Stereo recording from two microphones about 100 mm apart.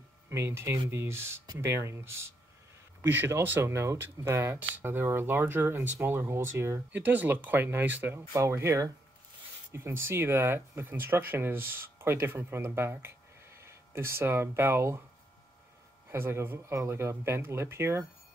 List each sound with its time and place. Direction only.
0.3 s speech: 25° right (ahead or behind)
8.3 s speech: 30° right (ahead or behind)
16.1 s speech: 25° right (ahead or behind)